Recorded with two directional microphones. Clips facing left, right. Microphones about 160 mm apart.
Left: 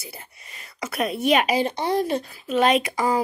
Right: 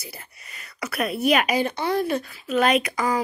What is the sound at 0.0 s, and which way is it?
Speech, 20° left (ahead or behind).